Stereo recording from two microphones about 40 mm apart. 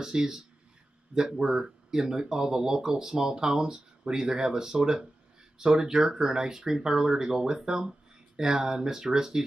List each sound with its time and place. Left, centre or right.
0.0 s speech: centre